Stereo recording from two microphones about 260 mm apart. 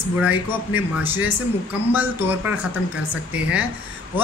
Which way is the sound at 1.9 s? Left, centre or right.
Centre.